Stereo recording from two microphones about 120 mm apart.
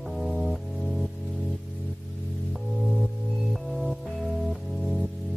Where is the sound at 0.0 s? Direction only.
Centre (ahead or behind).